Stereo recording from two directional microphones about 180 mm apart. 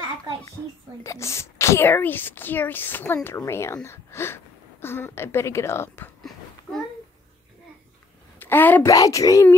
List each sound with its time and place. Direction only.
1.0 s speech: 15° left (ahead or behind)
8.4 s speech: 10° left (ahead or behind)